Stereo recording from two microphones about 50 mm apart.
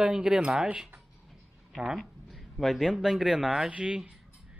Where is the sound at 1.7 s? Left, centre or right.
Centre.